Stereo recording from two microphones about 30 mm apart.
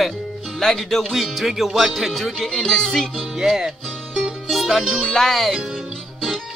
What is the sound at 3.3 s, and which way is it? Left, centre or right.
Music, centre.